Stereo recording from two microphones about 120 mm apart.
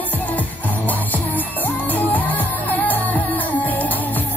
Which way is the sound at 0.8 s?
15° left (ahead or behind).